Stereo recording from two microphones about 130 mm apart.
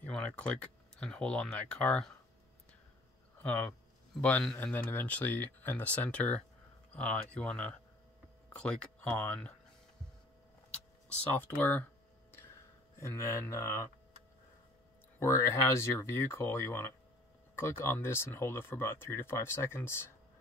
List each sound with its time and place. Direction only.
0.0 s speech: 10° left (ahead or behind)
3.3 s speech: 10° left (ahead or behind)
10.7 s speech: 10° left (ahead or behind)
13.0 s speech: 20° left (ahead or behind)
15.1 s speech: 20° left (ahead or behind)